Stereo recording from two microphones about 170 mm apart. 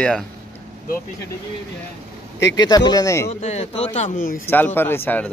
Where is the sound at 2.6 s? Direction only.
25° left (ahead or behind).